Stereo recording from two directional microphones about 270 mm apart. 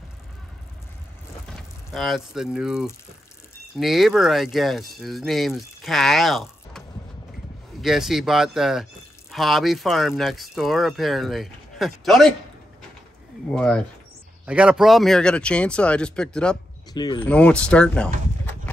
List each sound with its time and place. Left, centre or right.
1.5 s speech: centre
7.8 s speech: centre
13.5 s speech: centre
16.9 s speech: centre